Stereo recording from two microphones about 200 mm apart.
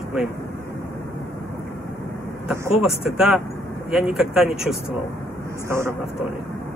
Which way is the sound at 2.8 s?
Centre (ahead or behind).